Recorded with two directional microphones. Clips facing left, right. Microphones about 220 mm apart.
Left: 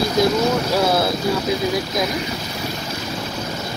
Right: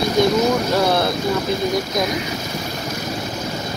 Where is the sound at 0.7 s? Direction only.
5° left (ahead or behind).